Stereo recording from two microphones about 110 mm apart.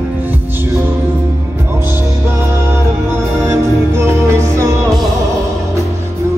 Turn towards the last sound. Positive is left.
turn(degrees=-30)  # may be behind; listen again after turning